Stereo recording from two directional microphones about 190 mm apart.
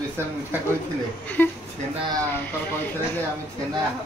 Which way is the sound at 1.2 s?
10° left (ahead or behind).